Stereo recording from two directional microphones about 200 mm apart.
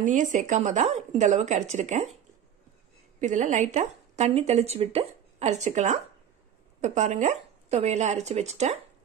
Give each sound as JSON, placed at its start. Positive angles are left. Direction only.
{"t": 0.0, "sound": "a woman's voice", "side_deg": -40}
{"t": 3.2, "sound": "a woman's voice", "side_deg": -40}